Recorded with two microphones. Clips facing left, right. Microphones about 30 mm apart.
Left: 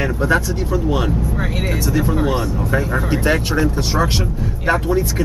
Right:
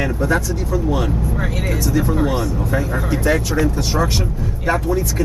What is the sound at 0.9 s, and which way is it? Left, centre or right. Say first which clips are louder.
Speech: left 1 dB; centre.